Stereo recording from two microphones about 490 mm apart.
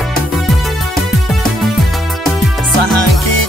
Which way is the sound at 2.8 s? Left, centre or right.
Right.